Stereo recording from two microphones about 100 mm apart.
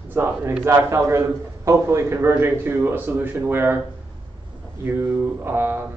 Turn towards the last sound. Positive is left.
turn(degrees=-20)  # may be behind; listen again after turning